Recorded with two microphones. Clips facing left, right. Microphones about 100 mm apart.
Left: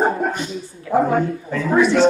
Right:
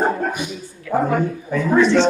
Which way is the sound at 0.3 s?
10° right (ahead or behind).